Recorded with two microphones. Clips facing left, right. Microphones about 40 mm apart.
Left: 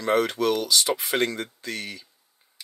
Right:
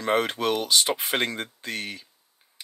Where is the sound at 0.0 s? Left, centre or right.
Right.